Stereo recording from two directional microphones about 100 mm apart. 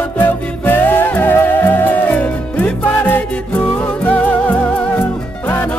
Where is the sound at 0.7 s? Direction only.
20° left (ahead or behind).